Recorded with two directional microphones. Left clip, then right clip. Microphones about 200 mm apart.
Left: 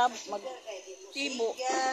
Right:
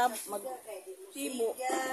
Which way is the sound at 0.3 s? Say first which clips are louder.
Left 2 dB; 20° right (ahead or behind).